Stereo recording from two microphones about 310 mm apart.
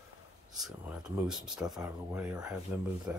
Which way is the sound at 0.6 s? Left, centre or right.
Centre.